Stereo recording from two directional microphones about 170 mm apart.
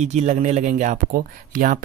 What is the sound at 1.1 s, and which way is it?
Speech, 60° right (ahead or behind).